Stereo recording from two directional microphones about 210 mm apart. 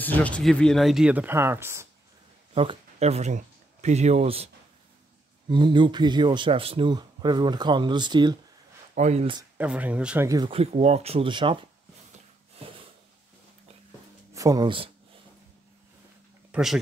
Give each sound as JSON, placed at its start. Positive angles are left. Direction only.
{"t": 0.0, "sound": "speech", "side_deg": 10}
{"t": 2.5, "sound": "speech", "side_deg": -25}
{"t": 5.5, "sound": "speech", "side_deg": -20}
{"t": 8.9, "sound": "speech", "side_deg": -35}
{"t": 9.6, "sound": "speech", "side_deg": -5}
{"t": 14.3, "sound": "speech", "side_deg": -15}
{"t": 16.5, "sound": "speech", "side_deg": -5}